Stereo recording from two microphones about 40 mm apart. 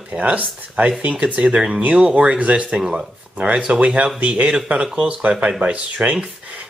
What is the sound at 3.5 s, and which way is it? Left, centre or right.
Speech, right.